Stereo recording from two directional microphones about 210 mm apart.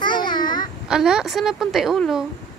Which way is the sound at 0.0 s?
20° left (ahead or behind).